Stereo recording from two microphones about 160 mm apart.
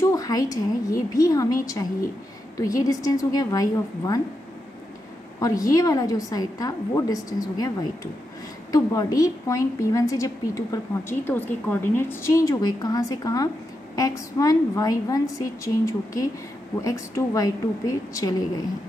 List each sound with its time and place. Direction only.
0.0 s a woman's voice: 20° left (ahead or behind)
5.4 s a woman's voice: 20° left (ahead or behind)